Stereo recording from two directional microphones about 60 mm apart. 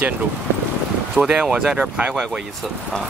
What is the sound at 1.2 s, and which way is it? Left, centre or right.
Speech, centre.